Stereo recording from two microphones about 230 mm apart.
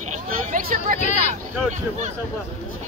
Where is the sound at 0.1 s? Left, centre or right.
Right.